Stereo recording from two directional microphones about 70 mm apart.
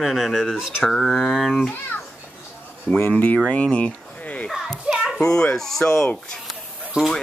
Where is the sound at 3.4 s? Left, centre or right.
Centre.